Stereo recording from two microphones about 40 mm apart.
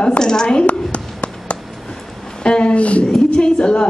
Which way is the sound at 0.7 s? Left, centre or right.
Left.